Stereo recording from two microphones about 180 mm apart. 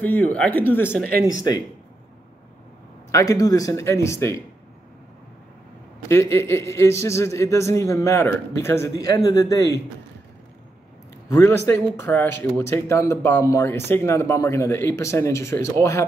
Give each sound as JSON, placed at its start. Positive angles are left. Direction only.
{"t": 0.0, "sound": "speech", "side_deg": 10}
{"t": 3.1, "sound": "speech", "side_deg": 20}
{"t": 6.0, "sound": "speech", "side_deg": 15}
{"t": 11.2, "sound": "speech", "side_deg": 15}